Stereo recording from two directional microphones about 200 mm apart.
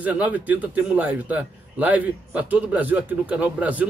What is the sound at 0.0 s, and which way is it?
A man's voice, 5° right (ahead or behind).